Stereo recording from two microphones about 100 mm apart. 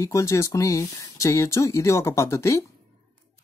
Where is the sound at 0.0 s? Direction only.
30° left (ahead or behind).